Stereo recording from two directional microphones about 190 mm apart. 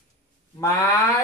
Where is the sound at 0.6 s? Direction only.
15° left (ahead or behind).